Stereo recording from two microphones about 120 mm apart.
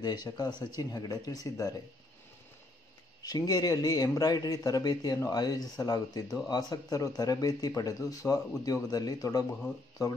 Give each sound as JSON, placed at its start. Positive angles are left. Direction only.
{"t": 0.0, "sound": "a man's voice", "side_deg": 35}
{"t": 3.2, "sound": "a man's voice", "side_deg": 30}